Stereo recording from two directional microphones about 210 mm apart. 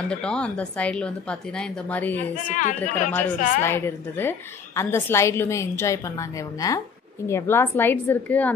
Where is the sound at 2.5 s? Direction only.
35° left (ahead or behind).